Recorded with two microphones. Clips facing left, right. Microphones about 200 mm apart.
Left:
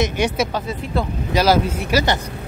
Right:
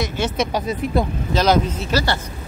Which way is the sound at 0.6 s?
15° right (ahead or behind).